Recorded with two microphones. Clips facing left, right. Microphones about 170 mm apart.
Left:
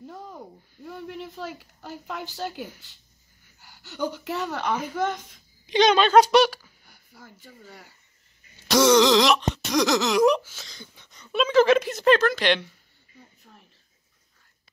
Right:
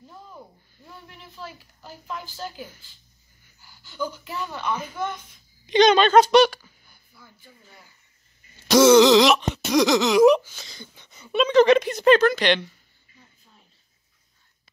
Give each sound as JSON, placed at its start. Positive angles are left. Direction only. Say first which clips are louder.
{"t": 1.0, "sound": "a woman's voice", "louder": "left 6 dB", "side_deg": 80}
{"t": 5.7, "sound": "speech", "louder": "right 2 dB", "side_deg": 5}
{"t": 6.9, "sound": "speech", "louder": "left 6 dB", "side_deg": 90}
{"t": 8.6, "sound": "throat clearing", "louder": "right 4 dB", "side_deg": 0}
{"t": 11.4, "sound": "speech", "louder": "right 2 dB", "side_deg": 5}